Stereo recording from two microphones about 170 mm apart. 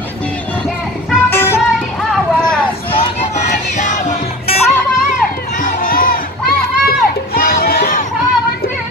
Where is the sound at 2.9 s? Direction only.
35° left (ahead or behind).